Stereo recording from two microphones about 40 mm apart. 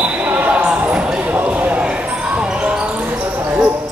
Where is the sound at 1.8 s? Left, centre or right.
Right.